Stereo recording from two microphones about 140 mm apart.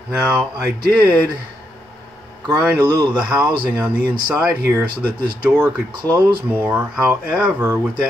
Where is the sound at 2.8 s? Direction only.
30° right (ahead or behind).